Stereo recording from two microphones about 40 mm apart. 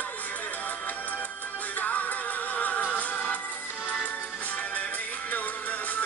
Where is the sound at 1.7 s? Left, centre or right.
Left.